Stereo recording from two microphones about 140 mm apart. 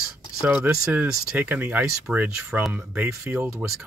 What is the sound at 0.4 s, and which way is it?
Speech, 15° right (ahead or behind).